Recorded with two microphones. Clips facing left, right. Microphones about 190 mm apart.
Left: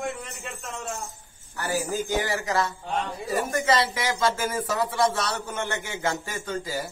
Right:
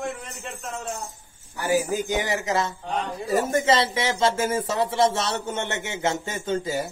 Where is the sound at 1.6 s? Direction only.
15° right (ahead or behind).